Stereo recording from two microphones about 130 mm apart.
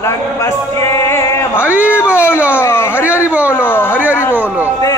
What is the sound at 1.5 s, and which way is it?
Speech, 10° right (ahead or behind).